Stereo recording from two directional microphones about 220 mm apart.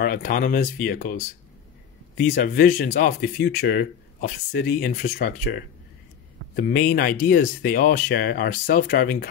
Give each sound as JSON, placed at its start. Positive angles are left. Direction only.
{"t": 0.0, "sound": "speech", "side_deg": 40}
{"t": 2.2, "sound": "speech", "side_deg": 40}